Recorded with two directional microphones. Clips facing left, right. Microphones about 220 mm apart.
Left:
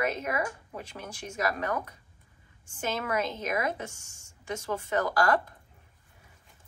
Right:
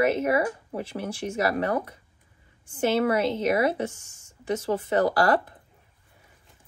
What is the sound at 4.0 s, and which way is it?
Speech, 10° left (ahead or behind).